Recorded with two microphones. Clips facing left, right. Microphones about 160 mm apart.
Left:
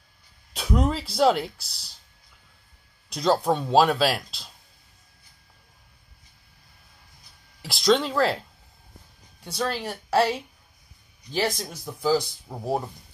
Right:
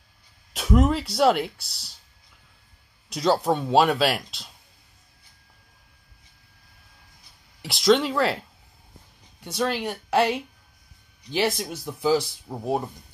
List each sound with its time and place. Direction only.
0.5 s speech: 5° right (ahead or behind)
3.1 s speech: 5° right (ahead or behind)
7.6 s speech: centre (ahead or behind)
9.4 s speech: 5° right (ahead or behind)
11.3 s speech: 5° right (ahead or behind)